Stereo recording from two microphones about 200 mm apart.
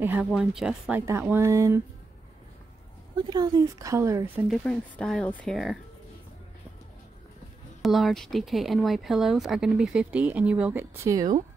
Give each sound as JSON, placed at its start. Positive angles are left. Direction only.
{"t": 0.0, "sound": "speech", "side_deg": -10}
{"t": 3.2, "sound": "speech", "side_deg": -20}
{"t": 4.5, "sound": "speech", "side_deg": 5}
{"t": 7.8, "sound": "speech", "side_deg": 0}